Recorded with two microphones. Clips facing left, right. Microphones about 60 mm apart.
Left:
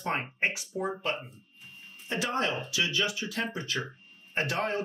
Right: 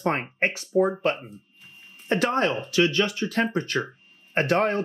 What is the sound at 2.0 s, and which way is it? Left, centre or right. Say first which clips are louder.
Speech: right 7 dB; right.